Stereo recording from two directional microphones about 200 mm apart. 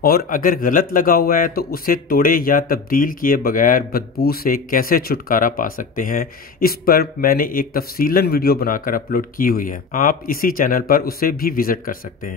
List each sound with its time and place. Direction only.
0.0 s speech: 50° left (ahead or behind)